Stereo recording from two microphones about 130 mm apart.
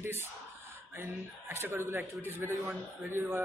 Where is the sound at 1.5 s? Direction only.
20° right (ahead or behind).